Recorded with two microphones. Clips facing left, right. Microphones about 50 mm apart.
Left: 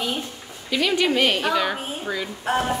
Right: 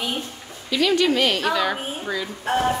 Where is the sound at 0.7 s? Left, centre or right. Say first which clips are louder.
Right 2 dB; centre.